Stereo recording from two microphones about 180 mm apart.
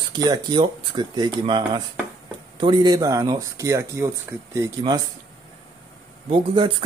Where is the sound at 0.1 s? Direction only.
25° right (ahead or behind).